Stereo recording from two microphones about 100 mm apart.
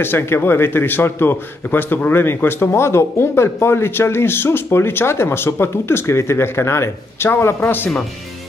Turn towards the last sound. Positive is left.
turn(degrees=20)  # may be behind; listen again after turning